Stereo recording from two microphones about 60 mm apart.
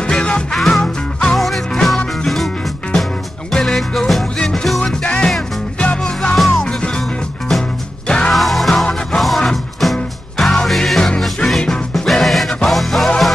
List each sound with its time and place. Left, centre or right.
0.0 s music: centre
0.6 s music: centre
5.0 s music: centre
6.3 s music: centre
6.6 s music: centre